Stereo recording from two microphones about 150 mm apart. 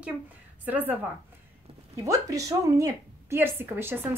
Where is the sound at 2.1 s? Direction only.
20° right (ahead or behind).